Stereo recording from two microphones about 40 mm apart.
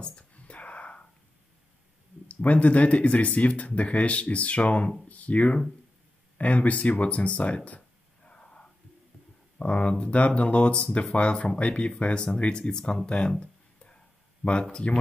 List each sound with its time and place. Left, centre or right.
0.0 s whispering: left
2.2 s speech: left
9.7 s speech: left